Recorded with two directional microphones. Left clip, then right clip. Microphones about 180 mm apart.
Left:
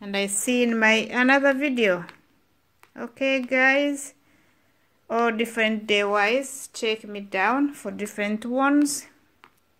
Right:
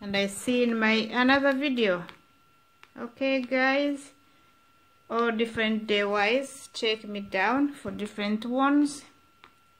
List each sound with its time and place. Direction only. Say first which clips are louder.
0.0 s a woman's voice: left 2 dB; 5° left (ahead or behind)
5.0 s a woman's voice: left 3 dB; 15° left (ahead or behind)